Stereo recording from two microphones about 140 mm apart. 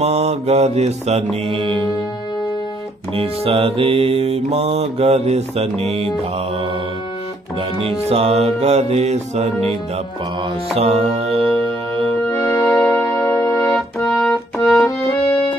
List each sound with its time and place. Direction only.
0.0 s mantra: 50° right (ahead or behind)
3.2 s mantra: 40° right (ahead or behind)
7.8 s mantra: 45° right (ahead or behind)
10.8 s music: 50° right (ahead or behind)
12.3 s music: 20° left (ahead or behind)